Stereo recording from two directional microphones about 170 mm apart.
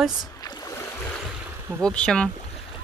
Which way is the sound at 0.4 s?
20° left (ahead or behind).